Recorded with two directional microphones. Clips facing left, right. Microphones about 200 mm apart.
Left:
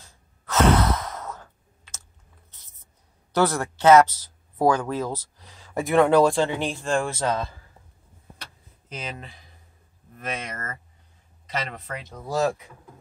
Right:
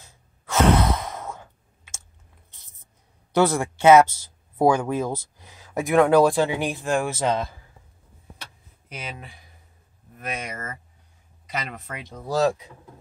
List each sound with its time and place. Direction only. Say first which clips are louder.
0.5 s sigh: right 1 dB; 10° right (ahead or behind)
3.3 s speech: right 2 dB; 10° right (ahead or behind)
6.4 s speech: right 1 dB; 15° right (ahead or behind)
7.1 s speech: right 2 dB; 20° right (ahead or behind)
8.8 s speech: left 1 dB; 10° right (ahead or behind)